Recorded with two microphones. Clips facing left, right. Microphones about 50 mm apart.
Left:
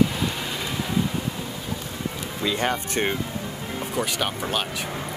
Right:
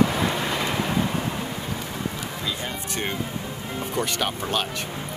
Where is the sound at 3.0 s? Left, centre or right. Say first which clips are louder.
Left 4 dB; left.